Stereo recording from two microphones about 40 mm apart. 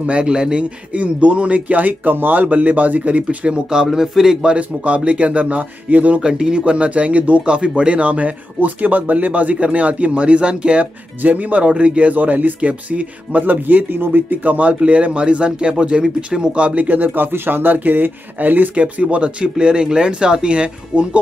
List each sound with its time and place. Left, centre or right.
0.0 s speech: right
0.9 s speech: right
2.4 s speech: right
3.8 s a man's voice: centre
4.6 s speech: right
6.2 s speech: centre; by 7.4 s right
7.4 s speech: right
8.5 s speech: right
16.8 s speech: right
17.7 s speech: right
18.8 s speech: right